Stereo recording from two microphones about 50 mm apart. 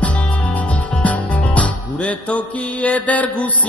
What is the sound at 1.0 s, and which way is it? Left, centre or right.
Music, left.